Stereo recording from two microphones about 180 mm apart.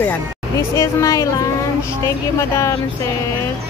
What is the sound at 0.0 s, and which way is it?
Speech, 10° left (ahead or behind).